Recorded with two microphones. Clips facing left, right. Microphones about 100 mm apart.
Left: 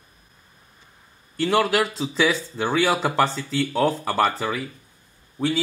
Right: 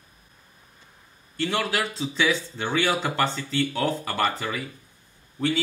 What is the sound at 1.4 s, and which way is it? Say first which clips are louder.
Speech: left 6 dB; 45° left (ahead or behind).